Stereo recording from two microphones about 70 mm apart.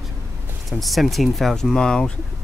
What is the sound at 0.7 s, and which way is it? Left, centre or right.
Speech, centre.